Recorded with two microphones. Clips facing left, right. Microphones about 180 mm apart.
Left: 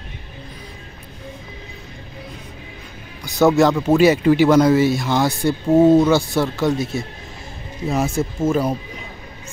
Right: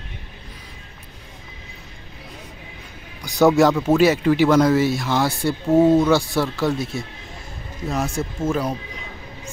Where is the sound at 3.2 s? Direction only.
10° right (ahead or behind).